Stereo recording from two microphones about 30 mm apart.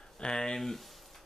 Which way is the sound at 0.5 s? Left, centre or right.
Centre.